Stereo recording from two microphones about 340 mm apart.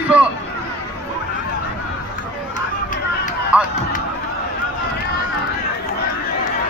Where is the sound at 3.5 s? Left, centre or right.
Centre.